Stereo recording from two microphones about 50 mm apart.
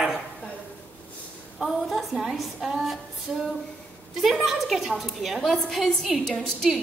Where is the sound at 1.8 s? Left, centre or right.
Centre.